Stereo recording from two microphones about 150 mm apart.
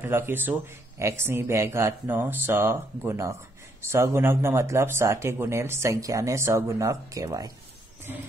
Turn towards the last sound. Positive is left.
turn(degrees=-25)  # may be behind; listen again after turning